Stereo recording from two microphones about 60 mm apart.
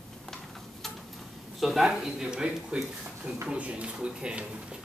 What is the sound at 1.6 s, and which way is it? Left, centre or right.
Speech, centre.